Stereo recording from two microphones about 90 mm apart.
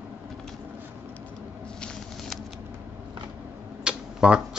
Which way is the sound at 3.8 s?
10° right (ahead or behind).